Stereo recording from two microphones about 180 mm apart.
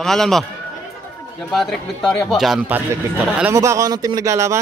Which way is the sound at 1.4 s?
Centre (ahead or behind).